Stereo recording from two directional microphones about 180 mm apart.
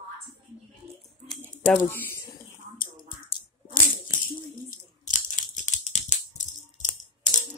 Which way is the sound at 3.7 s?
50° left (ahead or behind).